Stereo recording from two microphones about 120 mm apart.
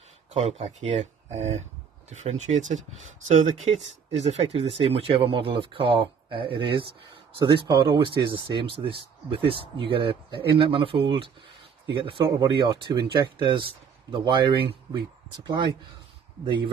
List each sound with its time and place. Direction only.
0.3 s speech: 65° right (ahead or behind)
3.3 s speech: 85° right; by 15.7 s 35° right (ahead or behind)